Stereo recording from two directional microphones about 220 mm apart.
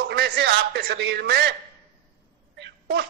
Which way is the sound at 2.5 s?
45° right (ahead or behind).